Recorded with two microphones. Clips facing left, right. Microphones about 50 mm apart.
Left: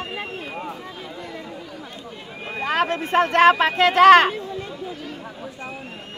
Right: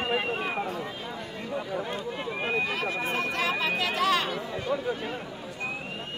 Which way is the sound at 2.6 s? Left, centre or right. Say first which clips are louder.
Left 7 dB; left.